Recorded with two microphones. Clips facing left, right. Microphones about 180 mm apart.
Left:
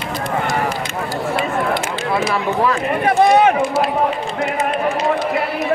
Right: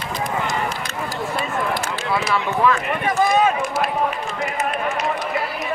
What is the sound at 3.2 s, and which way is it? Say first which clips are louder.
Speech: left 5 dB; 75° left (ahead or behind).